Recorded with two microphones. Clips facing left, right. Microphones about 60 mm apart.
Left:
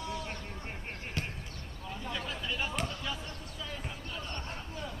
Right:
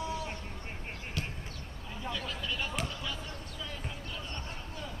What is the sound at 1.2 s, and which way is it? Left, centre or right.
Basketball bounce, left.